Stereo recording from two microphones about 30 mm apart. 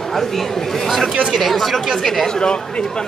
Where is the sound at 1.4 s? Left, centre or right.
Centre.